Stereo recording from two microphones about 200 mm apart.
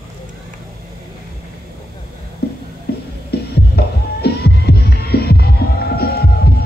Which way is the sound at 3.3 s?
55° left (ahead or behind).